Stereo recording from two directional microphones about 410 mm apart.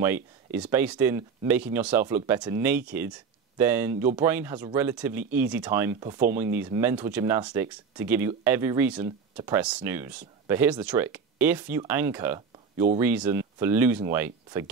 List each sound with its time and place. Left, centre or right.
0.0 s speech: centre